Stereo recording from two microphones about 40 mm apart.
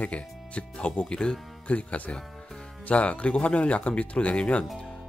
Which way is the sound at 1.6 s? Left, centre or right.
Left.